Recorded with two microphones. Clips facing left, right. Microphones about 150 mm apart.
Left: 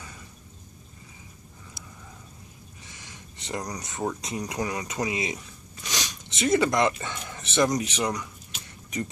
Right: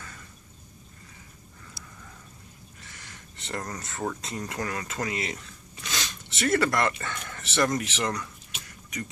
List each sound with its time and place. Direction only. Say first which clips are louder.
2.8 s speech: left 1 dB; 15° left (ahead or behind)